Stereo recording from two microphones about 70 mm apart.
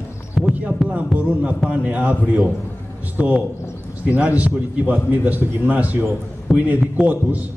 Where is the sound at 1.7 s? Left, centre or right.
Centre.